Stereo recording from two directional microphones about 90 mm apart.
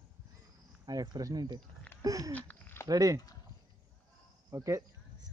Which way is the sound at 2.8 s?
40° right (ahead or behind).